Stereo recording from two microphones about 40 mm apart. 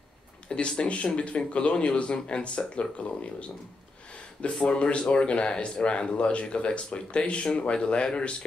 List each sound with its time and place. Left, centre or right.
0.5 s speech: left
4.6 s speech: left